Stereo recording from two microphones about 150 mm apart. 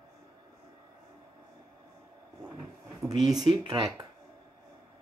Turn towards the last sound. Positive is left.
turn(degrees=-30)  # may be behind; listen again after turning